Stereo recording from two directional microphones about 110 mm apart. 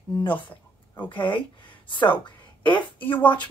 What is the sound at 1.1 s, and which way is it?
A woman's voice, 50° left (ahead or behind).